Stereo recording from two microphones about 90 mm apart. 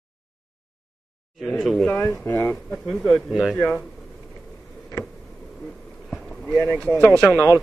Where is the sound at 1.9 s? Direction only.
25° left (ahead or behind).